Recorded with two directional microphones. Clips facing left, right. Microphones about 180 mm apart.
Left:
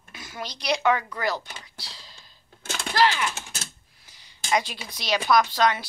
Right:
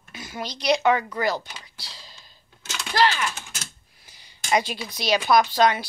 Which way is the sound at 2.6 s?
50° left (ahead or behind).